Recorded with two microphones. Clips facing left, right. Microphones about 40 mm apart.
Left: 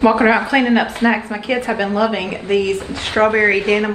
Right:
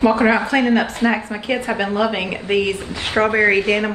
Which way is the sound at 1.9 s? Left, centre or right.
Centre.